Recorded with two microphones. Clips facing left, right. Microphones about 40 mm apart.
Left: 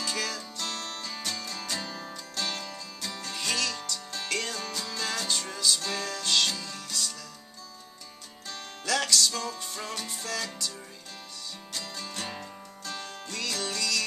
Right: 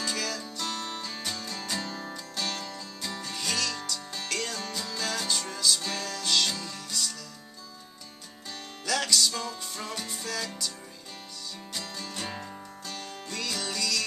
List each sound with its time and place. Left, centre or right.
0.0 s music: centre
8.5 s music: centre
11.7 s music: centre